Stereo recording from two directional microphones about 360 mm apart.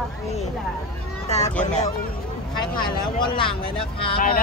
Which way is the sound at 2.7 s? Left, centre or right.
Left.